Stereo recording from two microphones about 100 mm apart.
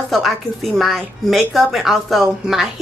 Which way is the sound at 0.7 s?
Centre (ahead or behind).